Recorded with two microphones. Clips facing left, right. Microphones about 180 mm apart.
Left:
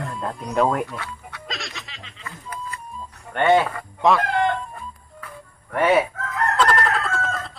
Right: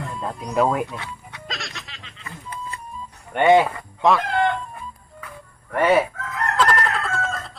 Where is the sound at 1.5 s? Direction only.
Centre (ahead or behind).